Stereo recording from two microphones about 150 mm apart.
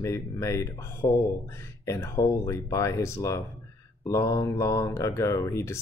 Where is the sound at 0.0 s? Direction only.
20° left (ahead or behind).